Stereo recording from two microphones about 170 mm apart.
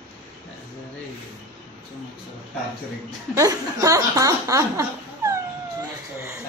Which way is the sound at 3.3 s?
20° right (ahead or behind).